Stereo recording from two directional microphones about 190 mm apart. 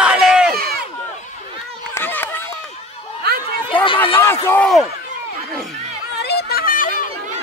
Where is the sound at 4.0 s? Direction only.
10° left (ahead or behind).